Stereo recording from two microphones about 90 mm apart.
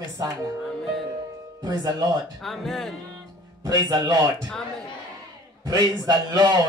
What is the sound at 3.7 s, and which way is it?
Speech, 45° right (ahead or behind).